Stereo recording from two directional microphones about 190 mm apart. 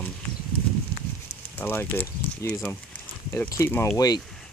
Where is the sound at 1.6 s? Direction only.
10° left (ahead or behind).